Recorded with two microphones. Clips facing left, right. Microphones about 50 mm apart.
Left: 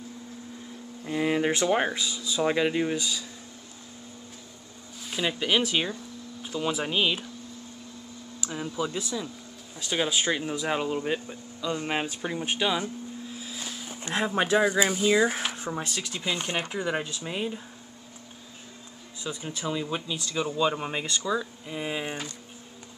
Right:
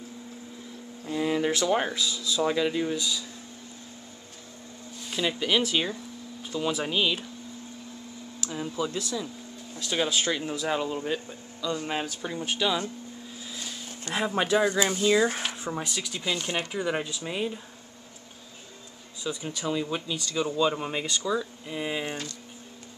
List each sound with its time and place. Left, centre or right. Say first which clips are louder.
1.0 s speech: left 1 dB; left
5.0 s speech: even; centre
8.4 s a sound: even; centre
8.7 s speech: even; centre
13.4 s music: left 1 dB; centre
14.1 s speech: left 1 dB; centre
19.2 s speech: right 2 dB; centre